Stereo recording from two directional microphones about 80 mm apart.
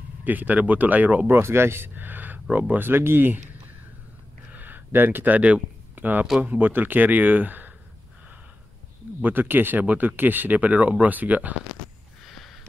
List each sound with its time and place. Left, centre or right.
0.2 s speech: right
1.3 s speech: right
4.5 s a sound: right
6.4 s speech: right
9.2 s speech: right
12.3 s a sound: centre